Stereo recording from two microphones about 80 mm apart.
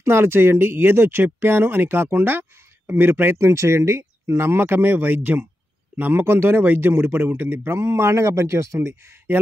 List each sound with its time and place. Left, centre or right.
0.0 s speech: right
3.4 s speech: right